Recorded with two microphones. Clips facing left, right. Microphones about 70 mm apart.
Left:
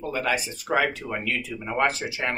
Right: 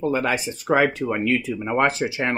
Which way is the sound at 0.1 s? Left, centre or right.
Right.